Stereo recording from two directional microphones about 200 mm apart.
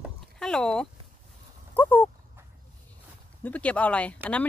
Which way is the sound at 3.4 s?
5° left (ahead or behind).